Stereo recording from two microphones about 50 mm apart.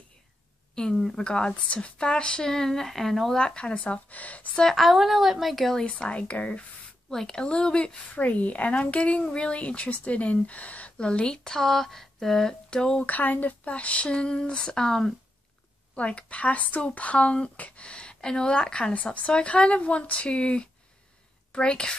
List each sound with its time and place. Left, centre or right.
0.7 s speech: centre
3.3 s speech: centre
4.6 s speech: centre
5.9 s speech: left
7.1 s speech: centre
12.6 s speech: centre
13.0 s speech: left; by 15.1 s centre
15.9 s a woman's voice: left